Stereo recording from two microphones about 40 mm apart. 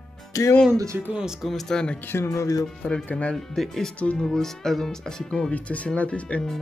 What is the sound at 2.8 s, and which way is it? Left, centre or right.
Speech, left.